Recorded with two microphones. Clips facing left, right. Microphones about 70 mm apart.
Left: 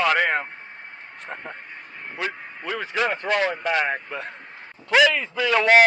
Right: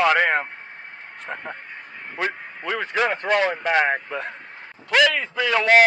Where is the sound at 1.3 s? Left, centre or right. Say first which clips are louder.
Right 3 dB; right.